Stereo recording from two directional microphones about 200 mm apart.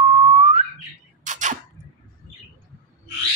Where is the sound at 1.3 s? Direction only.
35° right (ahead or behind).